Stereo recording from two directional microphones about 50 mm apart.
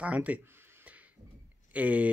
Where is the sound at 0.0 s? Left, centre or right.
Right.